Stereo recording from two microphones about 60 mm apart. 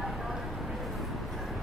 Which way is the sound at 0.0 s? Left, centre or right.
Centre.